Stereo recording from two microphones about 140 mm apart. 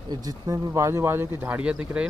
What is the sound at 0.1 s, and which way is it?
Speech, 25° right (ahead or behind).